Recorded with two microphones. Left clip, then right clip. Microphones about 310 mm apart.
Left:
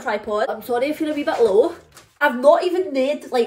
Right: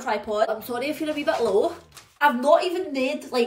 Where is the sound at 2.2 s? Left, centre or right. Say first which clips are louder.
Left 4 dB; centre.